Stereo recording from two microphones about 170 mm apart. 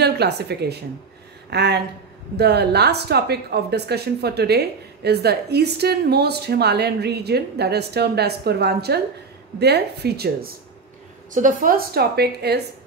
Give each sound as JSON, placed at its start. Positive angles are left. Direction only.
{"t": 0.0, "sound": "a woman's voice", "side_deg": -75}
{"t": 11.3, "sound": "a woman's voice", "side_deg": -50}